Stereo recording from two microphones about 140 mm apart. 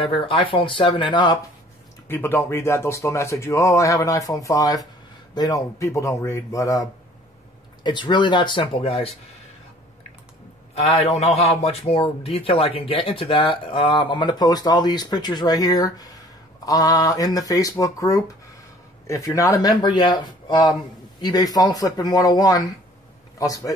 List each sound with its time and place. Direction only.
0.0 s speech: 40° left (ahead or behind)
2.0 s speech: 15° left (ahead or behind); by 9.1 s 45° left (ahead or behind)
10.7 s a man's voice: 50° left (ahead or behind); by 23.7 s 25° left (ahead or behind)